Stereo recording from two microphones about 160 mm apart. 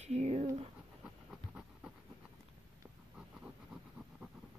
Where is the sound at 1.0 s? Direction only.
5° right (ahead or behind).